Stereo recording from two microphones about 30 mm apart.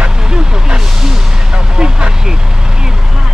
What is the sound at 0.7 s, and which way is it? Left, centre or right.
Speech, centre.